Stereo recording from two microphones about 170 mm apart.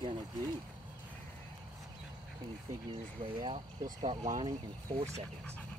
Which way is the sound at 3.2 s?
30° right (ahead or behind).